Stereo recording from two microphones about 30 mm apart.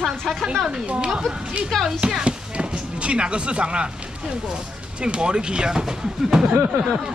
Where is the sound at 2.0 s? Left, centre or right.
Right.